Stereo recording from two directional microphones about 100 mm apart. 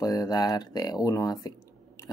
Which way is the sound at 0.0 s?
40° left (ahead or behind).